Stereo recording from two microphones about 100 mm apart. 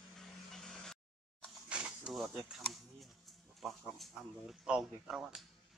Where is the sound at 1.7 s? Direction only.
10° right (ahead or behind).